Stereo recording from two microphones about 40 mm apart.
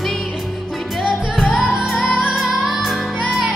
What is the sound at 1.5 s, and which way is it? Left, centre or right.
Music, centre.